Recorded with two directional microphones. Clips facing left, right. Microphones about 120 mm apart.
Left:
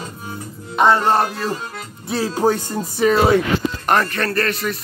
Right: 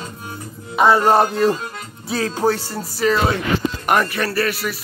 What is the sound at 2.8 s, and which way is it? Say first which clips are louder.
Speech: left 2 dB; 20° left (ahead or behind).